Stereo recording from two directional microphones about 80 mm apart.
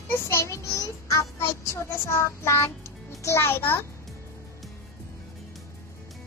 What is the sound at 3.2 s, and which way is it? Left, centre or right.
Speech, left.